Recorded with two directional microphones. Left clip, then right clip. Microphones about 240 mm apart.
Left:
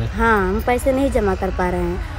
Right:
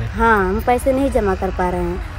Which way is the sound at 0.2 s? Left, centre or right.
Centre.